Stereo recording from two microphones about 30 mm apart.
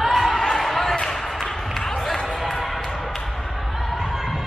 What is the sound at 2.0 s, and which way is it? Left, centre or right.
Music, centre.